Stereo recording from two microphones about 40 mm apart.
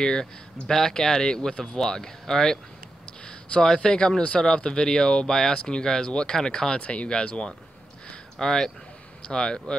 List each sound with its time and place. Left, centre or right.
0.0 s speech: centre
8.4 s speech: centre